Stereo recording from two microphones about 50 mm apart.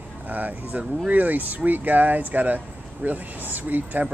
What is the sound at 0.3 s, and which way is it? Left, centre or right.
Speech, right.